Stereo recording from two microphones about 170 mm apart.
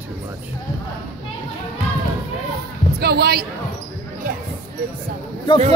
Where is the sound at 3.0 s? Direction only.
70° right (ahead or behind).